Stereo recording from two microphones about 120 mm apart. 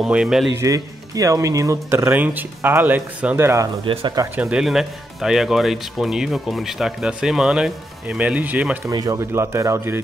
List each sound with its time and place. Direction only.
0.0 s speech: 5° right (ahead or behind)
0.6 s speech: 30° right (ahead or behind)
3.8 s speech: 45° right (ahead or behind)
4.4 s speech: 5° right (ahead or behind)
8.8 s speech: 30° right (ahead or behind)